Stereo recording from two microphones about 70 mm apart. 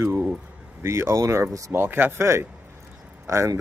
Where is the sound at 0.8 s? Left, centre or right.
Right.